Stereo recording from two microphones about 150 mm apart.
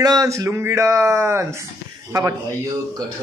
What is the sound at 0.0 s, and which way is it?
Speech, 25° right (ahead or behind).